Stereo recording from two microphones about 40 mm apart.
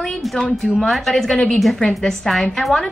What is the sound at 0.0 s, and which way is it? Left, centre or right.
A woman's voice, centre.